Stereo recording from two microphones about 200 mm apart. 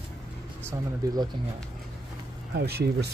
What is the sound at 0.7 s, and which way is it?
Speech, 20° right (ahead or behind).